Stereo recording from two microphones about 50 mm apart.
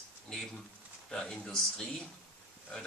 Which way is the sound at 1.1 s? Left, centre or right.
Centre.